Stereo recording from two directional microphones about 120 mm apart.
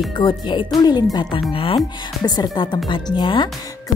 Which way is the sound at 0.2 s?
40° left (ahead or behind).